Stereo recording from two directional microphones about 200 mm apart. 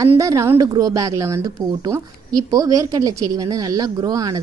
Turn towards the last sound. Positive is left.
turn(degrees=-20)  # may be behind; listen again after turning